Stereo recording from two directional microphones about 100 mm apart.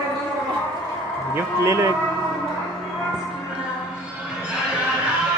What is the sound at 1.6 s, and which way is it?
Speech, 30° right (ahead or behind).